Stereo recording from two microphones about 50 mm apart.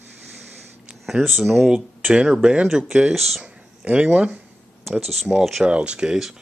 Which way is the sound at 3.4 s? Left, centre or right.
Right.